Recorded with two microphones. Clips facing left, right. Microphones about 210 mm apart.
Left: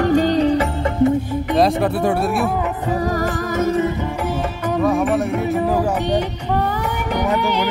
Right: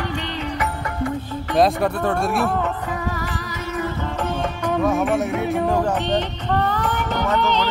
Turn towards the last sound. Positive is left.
turn(degrees=15)  # may be behind; listen again after turning